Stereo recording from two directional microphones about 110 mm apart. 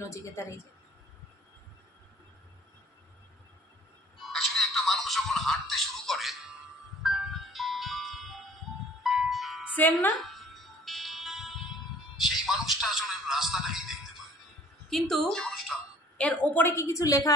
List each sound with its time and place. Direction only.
0.0 s a woman's voice: 25° left (ahead or behind)
4.2 s music: centre (ahead or behind)
12.4 s a sound: centre (ahead or behind)
14.9 s speech: centre (ahead or behind)
16.2 s a woman's voice: 15° left (ahead or behind); by 17.3 s 30° left (ahead or behind)